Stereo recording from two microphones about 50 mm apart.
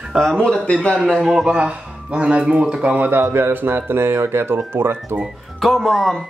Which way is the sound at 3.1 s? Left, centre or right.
Right.